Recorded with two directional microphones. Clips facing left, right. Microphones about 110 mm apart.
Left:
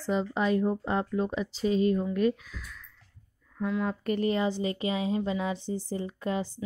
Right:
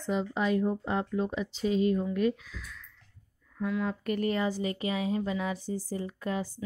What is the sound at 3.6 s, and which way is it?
Speech, 35° left (ahead or behind).